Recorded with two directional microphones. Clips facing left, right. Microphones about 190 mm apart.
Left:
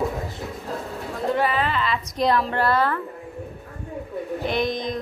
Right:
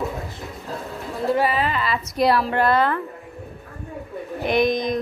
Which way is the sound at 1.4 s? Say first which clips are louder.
Right 1 dB; 10° right (ahead or behind).